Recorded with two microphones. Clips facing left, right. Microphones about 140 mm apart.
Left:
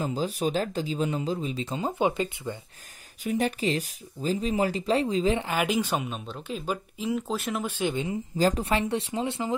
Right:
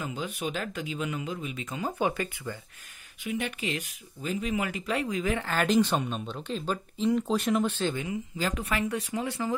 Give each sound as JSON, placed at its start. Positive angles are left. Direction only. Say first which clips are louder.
{"t": 0.0, "sound": "speech", "louder": "left 6 dB", "side_deg": 35}
{"t": 3.3, "sound": "speech", "louder": "left 6 dB", "side_deg": 35}
{"t": 5.5, "sound": "speech", "louder": "right 2 dB", "side_deg": 10}
{"t": 8.1, "sound": "speech", "louder": "left 6 dB", "side_deg": 35}